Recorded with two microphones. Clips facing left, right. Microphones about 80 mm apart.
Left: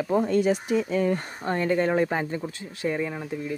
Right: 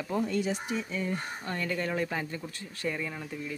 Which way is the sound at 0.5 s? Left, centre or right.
Left.